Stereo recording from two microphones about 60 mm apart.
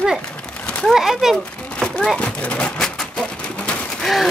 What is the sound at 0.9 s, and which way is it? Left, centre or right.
Speech, centre.